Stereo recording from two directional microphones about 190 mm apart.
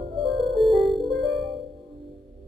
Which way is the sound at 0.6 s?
Centre (ahead or behind).